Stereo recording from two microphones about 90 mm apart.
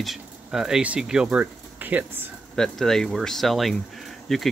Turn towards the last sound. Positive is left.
turn(degrees=0)  # may be behind; listen again after turning